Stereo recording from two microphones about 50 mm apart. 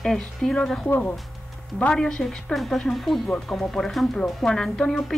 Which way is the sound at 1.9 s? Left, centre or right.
Centre.